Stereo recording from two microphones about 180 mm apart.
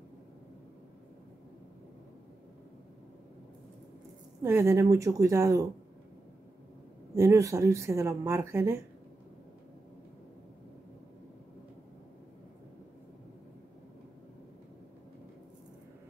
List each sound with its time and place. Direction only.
4.4 s speech: 15° right (ahead or behind)
7.2 s speech: 15° right (ahead or behind)